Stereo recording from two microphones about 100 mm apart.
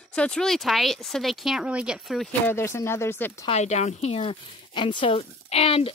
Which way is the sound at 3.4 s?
90° left.